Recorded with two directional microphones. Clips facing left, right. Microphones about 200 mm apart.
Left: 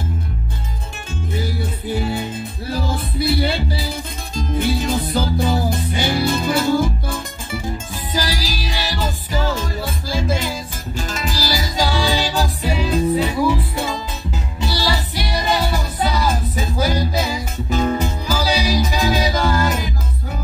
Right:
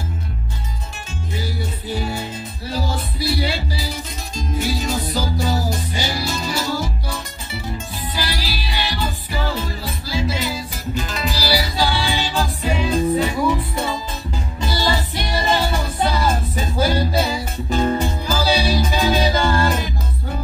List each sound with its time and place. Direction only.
3.2 s music: 55° left (ahead or behind)
12.6 s music: 5° left (ahead or behind)